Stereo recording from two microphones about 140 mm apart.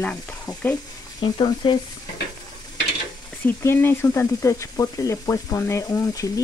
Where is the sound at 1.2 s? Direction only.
35° left (ahead or behind).